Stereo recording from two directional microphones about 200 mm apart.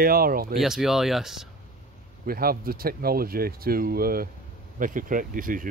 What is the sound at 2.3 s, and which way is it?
A man's voice, 50° right (ahead or behind).